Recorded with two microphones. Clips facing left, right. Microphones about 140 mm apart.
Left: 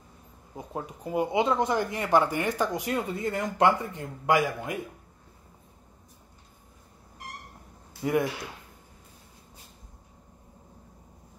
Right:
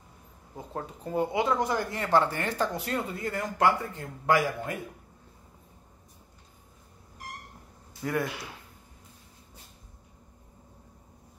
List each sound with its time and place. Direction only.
0.6 s speech: 10° left (ahead or behind)
8.0 s speech: 20° left (ahead or behind)